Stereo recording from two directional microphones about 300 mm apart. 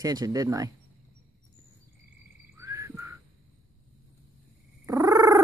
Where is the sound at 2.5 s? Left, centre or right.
Centre.